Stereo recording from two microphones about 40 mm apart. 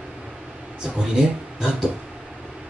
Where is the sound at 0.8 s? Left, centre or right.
Centre.